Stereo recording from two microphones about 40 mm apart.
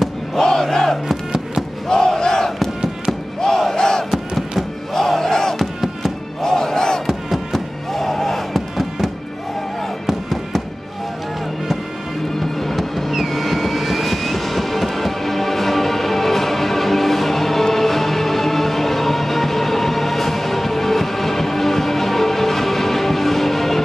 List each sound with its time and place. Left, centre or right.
0.4 s crowd: centre
1.0 s music: centre
1.9 s crowd: centre
3.3 s battle cry: centre
4.1 s a sound: centre
4.9 s battle cry: centre
7.1 s music: centre
10.0 s music: centre
12.4 s music: centre
13.1 s vehicle: centre